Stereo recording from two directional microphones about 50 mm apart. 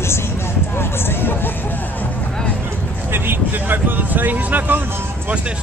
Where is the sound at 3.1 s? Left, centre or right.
Right.